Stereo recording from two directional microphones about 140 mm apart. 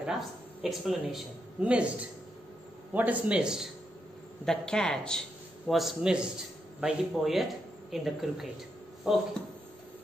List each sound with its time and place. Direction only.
0.0 s speech: 5° right (ahead or behind)
4.5 s speech: 5° left (ahead or behind)